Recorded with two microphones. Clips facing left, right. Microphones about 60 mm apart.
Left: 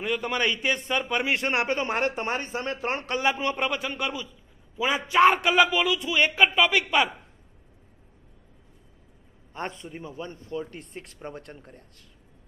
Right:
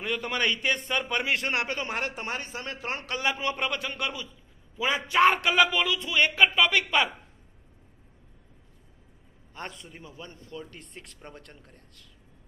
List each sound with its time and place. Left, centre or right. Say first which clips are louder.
0.0 s a man's voice: left 2 dB; centre
1.2 s a man's voice: left 3 dB; left; by 7.2 s centre
9.5 s speech: left 6 dB; left